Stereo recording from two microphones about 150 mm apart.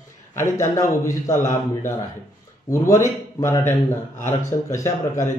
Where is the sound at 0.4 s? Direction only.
20° left (ahead or behind).